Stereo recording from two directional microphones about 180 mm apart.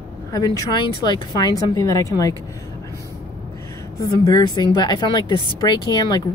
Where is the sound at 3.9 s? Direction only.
20° left (ahead or behind).